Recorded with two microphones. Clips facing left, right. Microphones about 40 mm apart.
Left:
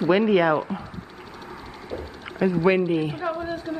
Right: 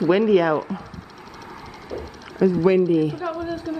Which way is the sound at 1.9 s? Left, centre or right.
Centre.